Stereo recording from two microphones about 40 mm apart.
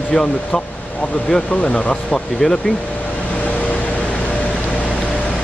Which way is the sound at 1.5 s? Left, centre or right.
Left.